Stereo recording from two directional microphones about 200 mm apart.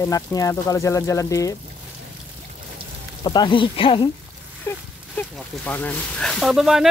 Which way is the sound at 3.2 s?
25° left (ahead or behind).